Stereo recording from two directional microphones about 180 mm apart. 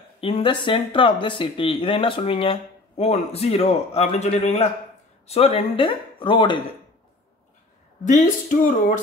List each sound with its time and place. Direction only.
0.2 s speech: 30° left (ahead or behind)
8.0 s speech: 45° left (ahead or behind)